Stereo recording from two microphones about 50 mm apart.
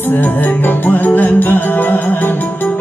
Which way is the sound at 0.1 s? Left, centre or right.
Left.